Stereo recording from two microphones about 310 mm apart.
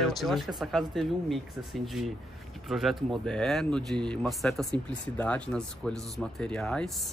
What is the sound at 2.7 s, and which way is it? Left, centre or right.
Speech, centre.